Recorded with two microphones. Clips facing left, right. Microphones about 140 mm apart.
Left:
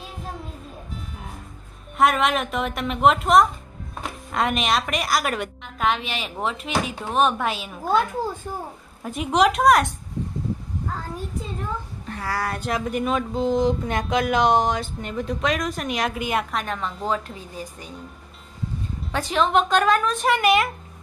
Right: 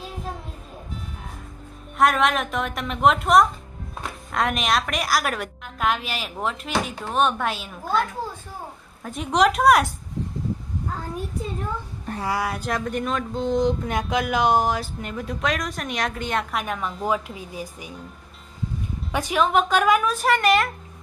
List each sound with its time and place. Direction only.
2.0 s speech: centre (ahead or behind)
12.2 s a woman's voice: 15° right (ahead or behind)
12.4 s speech: centre (ahead or behind)
16.5 s a woman's voice: 5° right (ahead or behind)
19.1 s speech: 10° right (ahead or behind)